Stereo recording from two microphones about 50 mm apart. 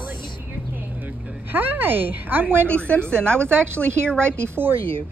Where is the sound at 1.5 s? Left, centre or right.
Right.